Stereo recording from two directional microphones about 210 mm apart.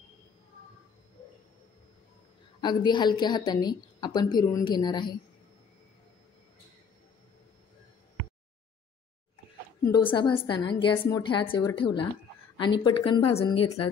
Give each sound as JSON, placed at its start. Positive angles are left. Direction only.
{"t": 2.6, "sound": "a woman's voice", "side_deg": 20}
{"t": 9.8, "sound": "a woman's voice", "side_deg": 20}